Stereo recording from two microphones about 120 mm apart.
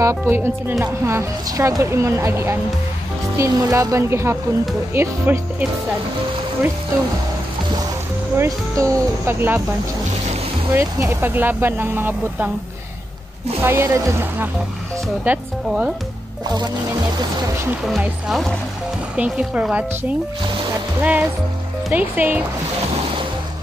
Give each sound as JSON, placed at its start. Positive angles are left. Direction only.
{"t": 0.0, "sound": "speech", "side_deg": -20}
{"t": 8.4, "sound": "speech", "side_deg": -25}
{"t": 10.7, "sound": "speech", "side_deg": -20}
{"t": 13.6, "sound": "speech", "side_deg": -20}
{"t": 15.2, "sound": "speech", "side_deg": -10}
{"t": 16.4, "sound": "speech", "side_deg": -35}
{"t": 18.3, "sound": "speech", "side_deg": 0}
{"t": 19.1, "sound": "speech", "side_deg": -10}